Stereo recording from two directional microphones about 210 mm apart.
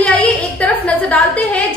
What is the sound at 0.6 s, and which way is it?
Speech, 5° left (ahead or behind).